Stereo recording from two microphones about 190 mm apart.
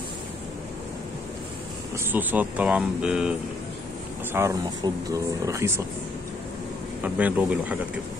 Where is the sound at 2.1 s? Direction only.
10° right (ahead or behind).